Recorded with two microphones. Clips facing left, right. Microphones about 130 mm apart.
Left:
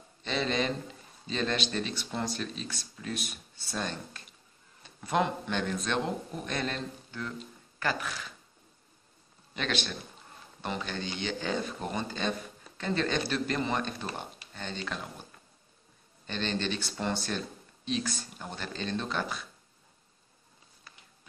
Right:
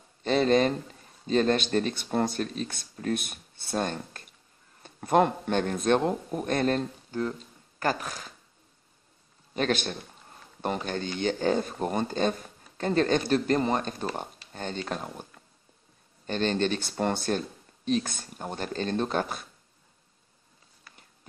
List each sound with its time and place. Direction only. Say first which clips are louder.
0.2 s a man's voice: right 8 dB; 45° right (ahead or behind)
9.5 s a man's voice: right 6 dB; 45° right (ahead or behind)
16.3 s speech: right 6 dB; 45° right (ahead or behind)